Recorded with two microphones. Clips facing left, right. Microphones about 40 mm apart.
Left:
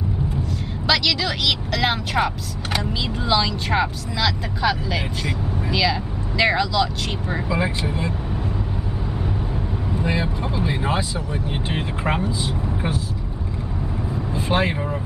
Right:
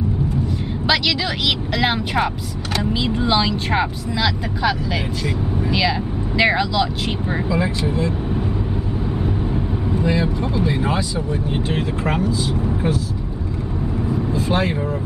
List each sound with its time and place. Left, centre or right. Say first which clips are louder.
0.8 s speech: right 1 dB; centre
7.4 s speech: right 2 dB; centre
10.0 s speech: right 4 dB; centre
14.3 s vehicle: left 1 dB; centre